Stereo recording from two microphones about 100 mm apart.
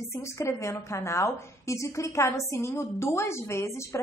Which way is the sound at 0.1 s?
30° left (ahead or behind).